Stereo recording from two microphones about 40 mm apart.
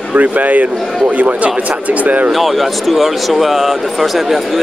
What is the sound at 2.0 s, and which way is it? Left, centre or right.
Speech, right.